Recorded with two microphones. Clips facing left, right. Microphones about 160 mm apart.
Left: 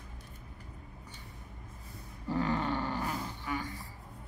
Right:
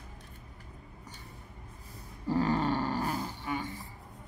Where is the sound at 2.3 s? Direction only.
35° right (ahead or behind).